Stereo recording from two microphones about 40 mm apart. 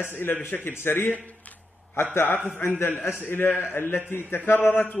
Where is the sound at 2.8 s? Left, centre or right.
Left.